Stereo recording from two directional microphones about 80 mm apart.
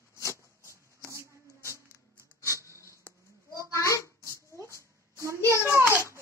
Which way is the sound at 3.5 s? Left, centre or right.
Left.